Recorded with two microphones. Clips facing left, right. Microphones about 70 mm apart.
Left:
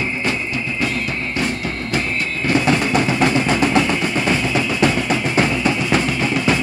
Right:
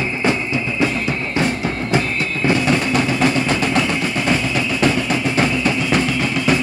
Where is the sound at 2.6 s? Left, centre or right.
Centre.